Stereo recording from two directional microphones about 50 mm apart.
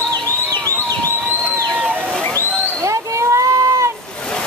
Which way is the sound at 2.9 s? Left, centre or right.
Right.